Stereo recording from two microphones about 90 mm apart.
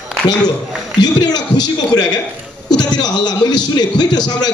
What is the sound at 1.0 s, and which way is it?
Speech, 50° left (ahead or behind).